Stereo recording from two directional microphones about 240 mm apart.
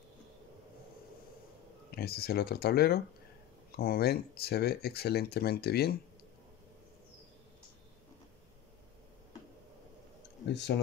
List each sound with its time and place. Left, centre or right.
2.0 s speech: left
10.4 s speech: left